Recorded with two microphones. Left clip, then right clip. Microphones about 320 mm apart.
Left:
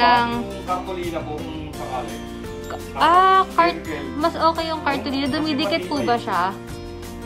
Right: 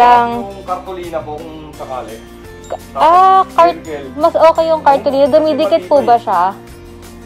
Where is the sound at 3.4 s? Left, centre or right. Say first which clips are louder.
Right 8 dB; left.